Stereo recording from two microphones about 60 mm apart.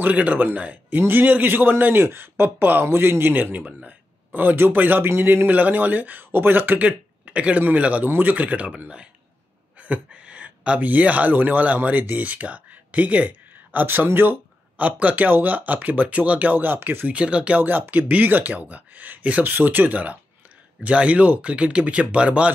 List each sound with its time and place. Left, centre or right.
0.0 s a man's voice: right
14.8 s speech: right
17.1 s speech: centre
17.6 s a man's voice: right